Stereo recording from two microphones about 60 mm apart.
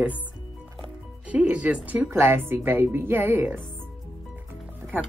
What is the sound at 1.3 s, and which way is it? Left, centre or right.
Speech, right.